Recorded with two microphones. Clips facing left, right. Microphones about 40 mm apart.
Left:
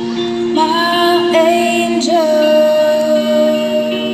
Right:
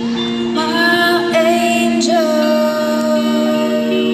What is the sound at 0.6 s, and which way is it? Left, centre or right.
Music, centre.